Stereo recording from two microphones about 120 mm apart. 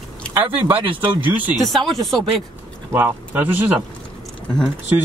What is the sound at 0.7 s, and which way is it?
Speech, 45° right (ahead or behind).